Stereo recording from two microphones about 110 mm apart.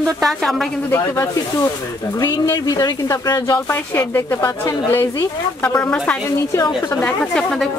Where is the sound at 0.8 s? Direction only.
20° left (ahead or behind).